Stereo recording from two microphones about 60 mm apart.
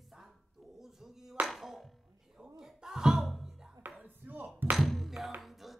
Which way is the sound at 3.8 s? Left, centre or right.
Right.